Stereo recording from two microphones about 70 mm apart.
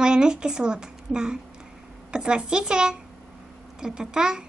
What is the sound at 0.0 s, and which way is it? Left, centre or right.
A woman's voice, centre.